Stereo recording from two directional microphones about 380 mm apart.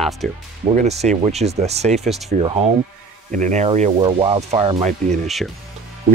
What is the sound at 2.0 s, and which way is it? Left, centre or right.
Speech, centre.